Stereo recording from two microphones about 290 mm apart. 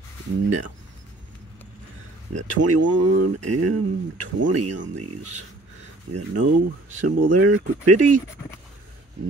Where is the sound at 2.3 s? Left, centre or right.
Right.